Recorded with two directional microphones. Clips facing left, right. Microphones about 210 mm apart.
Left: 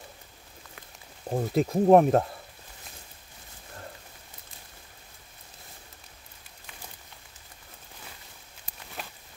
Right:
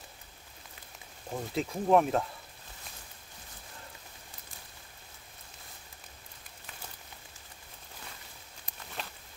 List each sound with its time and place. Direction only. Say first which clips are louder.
1.3 s speech: left 8 dB; 45° left (ahead or behind)